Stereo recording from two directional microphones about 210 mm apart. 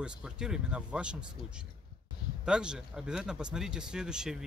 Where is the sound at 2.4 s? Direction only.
5° right (ahead or behind).